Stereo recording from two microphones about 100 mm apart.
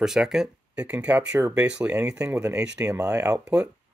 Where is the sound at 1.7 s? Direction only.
10° right (ahead or behind).